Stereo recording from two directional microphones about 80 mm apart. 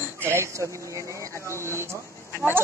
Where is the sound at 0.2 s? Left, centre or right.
Right.